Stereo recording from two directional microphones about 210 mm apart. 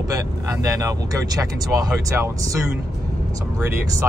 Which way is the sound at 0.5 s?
15° right (ahead or behind).